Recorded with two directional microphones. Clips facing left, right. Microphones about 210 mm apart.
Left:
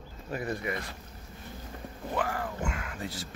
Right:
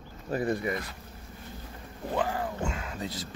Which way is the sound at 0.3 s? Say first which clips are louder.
Right 5 dB; 35° right (ahead or behind).